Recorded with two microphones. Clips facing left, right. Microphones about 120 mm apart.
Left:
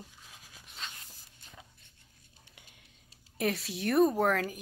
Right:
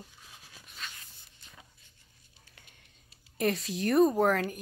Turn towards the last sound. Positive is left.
turn(degrees=0)  # may be behind; listen again after turning